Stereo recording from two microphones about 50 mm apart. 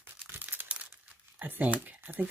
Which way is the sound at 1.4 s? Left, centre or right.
Right.